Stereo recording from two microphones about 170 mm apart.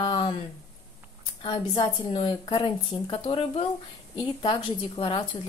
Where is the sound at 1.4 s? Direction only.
30° left (ahead or behind).